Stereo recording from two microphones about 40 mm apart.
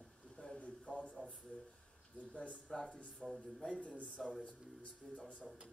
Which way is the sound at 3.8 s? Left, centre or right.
Left.